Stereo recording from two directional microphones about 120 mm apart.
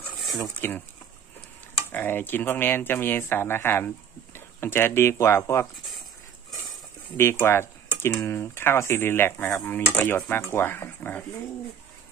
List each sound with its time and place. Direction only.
0.3 s speech: 20° left (ahead or behind)
1.9 s speech: 15° left (ahead or behind)
7.1 s speech: 20° left (ahead or behind)